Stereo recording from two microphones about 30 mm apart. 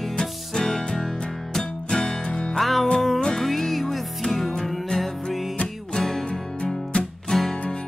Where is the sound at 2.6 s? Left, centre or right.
Centre.